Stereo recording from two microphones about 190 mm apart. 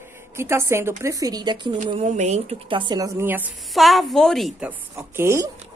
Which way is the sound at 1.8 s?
35° right (ahead or behind).